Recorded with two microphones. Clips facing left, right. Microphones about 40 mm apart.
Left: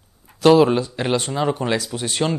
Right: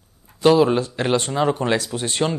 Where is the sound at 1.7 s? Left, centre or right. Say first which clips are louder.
Right 1 dB; right.